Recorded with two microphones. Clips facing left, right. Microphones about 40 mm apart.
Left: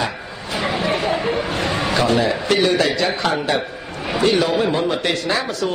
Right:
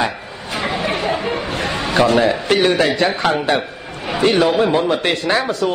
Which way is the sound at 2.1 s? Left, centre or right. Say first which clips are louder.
Right 3 dB; right.